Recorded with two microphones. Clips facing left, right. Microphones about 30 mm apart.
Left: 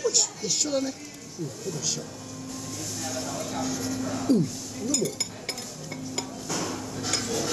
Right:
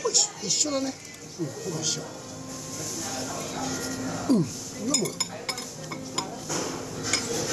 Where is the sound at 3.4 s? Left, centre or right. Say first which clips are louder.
Left 2 dB; centre.